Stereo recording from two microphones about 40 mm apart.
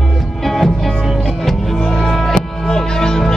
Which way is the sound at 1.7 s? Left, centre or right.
Centre.